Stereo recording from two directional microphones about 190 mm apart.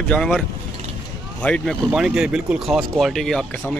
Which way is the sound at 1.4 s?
5° left (ahead or behind).